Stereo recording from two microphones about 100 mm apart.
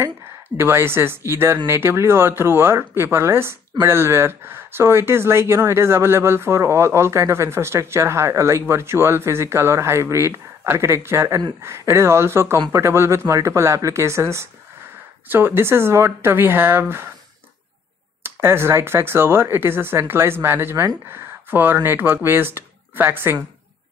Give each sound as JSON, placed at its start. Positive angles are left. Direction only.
{"t": 0.6, "sound": "speech", "side_deg": -25}
{"t": 18.2, "sound": "speech", "side_deg": -25}